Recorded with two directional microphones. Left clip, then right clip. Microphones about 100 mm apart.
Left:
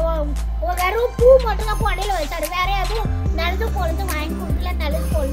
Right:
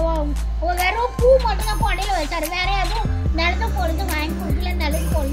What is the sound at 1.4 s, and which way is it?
A child's voice, 30° left (ahead or behind).